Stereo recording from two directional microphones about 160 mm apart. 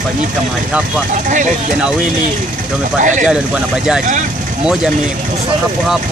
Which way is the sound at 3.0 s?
50° right (ahead or behind).